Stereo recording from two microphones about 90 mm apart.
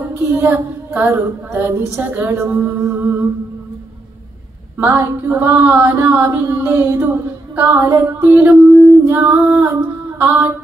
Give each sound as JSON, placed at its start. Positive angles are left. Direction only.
{"t": 0.3, "sound": "female singing", "side_deg": -25}
{"t": 4.7, "sound": "female singing", "side_deg": -20}